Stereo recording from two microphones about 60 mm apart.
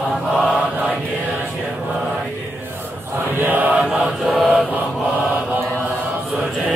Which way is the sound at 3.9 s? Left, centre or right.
Centre.